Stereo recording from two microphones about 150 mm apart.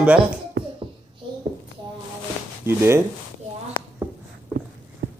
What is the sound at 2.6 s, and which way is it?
Speech, 15° right (ahead or behind).